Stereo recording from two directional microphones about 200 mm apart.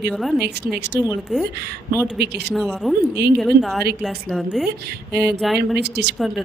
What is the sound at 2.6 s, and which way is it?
A woman's voice, centre (ahead or behind).